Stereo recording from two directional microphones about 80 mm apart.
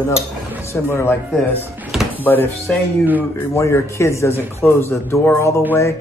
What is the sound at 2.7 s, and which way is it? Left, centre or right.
Music, centre.